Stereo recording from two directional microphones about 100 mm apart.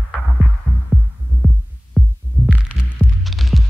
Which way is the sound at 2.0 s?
10° left (ahead or behind).